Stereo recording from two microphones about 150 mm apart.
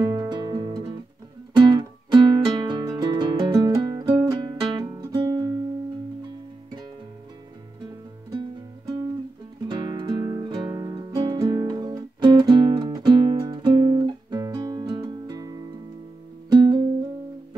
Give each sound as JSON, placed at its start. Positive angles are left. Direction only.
{"t": 0.0, "sound": "music", "side_deg": -30}
{"t": 8.4, "sound": "music", "side_deg": -30}